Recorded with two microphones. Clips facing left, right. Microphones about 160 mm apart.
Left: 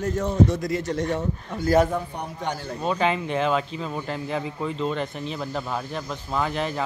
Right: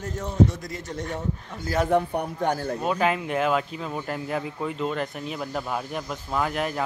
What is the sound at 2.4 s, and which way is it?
Speech, 50° right (ahead or behind).